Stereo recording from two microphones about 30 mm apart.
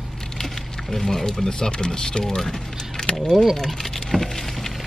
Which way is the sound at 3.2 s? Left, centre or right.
Centre.